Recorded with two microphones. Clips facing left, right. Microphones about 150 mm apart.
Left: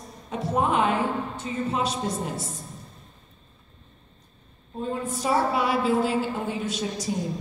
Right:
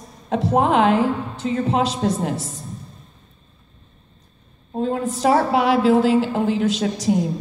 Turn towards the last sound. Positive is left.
turn(degrees=-90)